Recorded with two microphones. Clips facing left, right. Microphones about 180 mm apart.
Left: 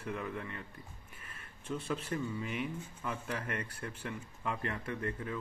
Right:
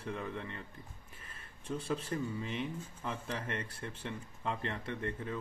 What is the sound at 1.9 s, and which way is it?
Speech, 30° right (ahead or behind).